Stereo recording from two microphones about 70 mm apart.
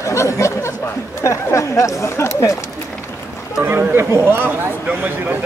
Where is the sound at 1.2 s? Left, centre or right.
Left.